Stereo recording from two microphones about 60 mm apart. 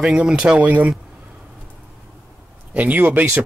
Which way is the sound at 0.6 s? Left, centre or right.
Right.